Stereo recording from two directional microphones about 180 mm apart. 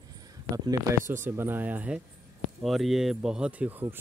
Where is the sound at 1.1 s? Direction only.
15° right (ahead or behind).